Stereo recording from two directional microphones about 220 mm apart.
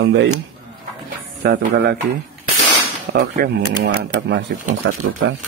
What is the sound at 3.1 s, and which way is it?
Speech, 45° right (ahead or behind).